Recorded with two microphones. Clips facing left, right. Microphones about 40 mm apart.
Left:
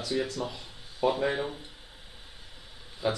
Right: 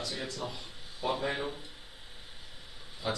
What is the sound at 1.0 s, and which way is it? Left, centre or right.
Speech, centre.